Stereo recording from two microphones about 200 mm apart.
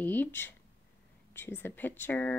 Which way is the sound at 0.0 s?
10° left (ahead or behind).